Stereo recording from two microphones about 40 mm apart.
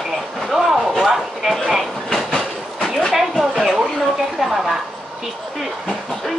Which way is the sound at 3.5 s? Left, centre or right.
Centre.